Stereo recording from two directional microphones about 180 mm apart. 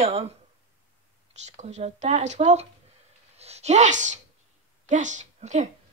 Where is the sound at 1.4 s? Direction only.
40° right (ahead or behind).